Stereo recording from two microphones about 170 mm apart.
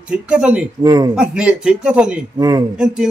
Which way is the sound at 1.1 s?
5° right (ahead or behind).